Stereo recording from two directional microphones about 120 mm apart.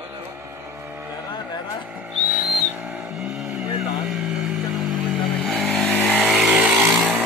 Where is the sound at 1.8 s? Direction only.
10° right (ahead or behind).